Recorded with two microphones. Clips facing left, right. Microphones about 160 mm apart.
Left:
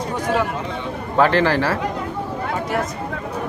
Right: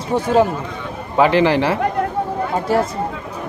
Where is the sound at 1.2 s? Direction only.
15° right (ahead or behind).